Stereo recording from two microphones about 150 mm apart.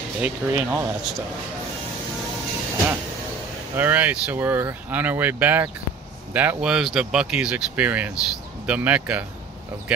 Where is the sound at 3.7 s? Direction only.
10° right (ahead or behind).